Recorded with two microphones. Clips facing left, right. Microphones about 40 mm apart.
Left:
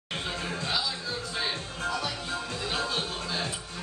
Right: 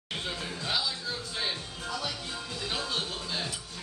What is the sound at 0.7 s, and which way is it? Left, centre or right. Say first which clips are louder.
Music: right 1 dB; centre.